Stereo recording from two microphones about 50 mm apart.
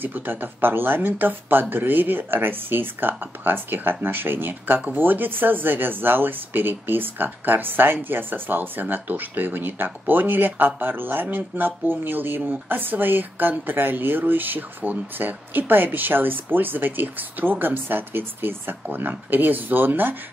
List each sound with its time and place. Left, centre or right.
0.0 s speech: right